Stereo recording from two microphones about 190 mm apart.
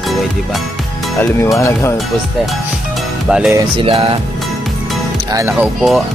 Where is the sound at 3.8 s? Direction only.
30° right (ahead or behind).